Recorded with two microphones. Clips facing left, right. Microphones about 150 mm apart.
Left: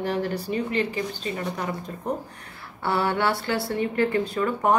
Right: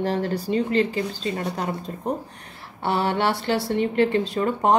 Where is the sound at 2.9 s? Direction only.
25° right (ahead or behind).